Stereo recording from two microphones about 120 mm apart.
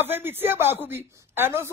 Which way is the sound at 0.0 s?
20° right (ahead or behind).